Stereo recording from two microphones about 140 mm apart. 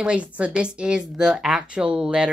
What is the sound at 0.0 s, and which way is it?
Speech, 10° right (ahead or behind).